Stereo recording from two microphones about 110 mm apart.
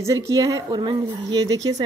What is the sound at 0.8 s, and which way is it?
Speech, 45° right (ahead or behind).